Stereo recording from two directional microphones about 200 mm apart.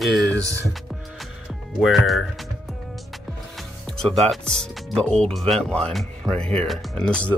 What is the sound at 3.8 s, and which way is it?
Speech, centre (ahead or behind).